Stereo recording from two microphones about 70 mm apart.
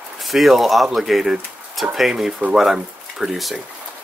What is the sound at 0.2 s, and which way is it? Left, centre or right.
Speech, centre.